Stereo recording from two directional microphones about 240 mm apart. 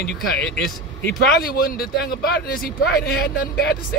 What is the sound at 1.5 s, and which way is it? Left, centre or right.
A man's voice, left.